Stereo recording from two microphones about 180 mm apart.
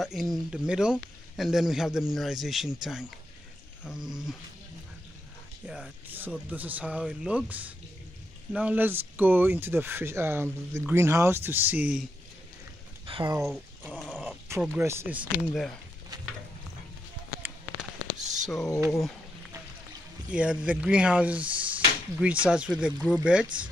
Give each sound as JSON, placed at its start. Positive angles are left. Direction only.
{"t": 0.0, "sound": "speech", "side_deg": 0}
{"t": 5.7, "sound": "speech", "side_deg": -5}
{"t": 13.0, "sound": "a sound", "side_deg": -25}
{"t": 13.4, "sound": "a sound", "side_deg": 0}
{"t": 14.5, "sound": "speech", "side_deg": -15}
{"t": 15.4, "sound": "speech", "side_deg": 5}
{"t": 18.2, "sound": "a sound", "side_deg": -40}
{"t": 18.9, "sound": "speech", "side_deg": 0}
{"t": 20.2, "sound": "speech", "side_deg": -5}